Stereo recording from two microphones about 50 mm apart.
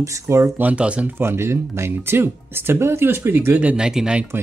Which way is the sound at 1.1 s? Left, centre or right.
Right.